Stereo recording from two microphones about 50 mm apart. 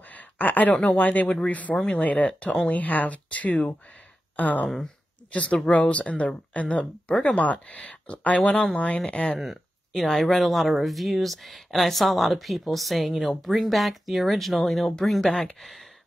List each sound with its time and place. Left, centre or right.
0.0 s a sound: left
0.9 s speech: left
8.4 s speech: centre
8.7 s speech: left
9.4 s a sound: centre
10.0 s speech: centre
15.2 s speech: centre
15.6 s speech: centre